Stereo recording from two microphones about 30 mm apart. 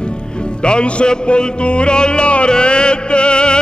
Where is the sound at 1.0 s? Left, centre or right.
Left.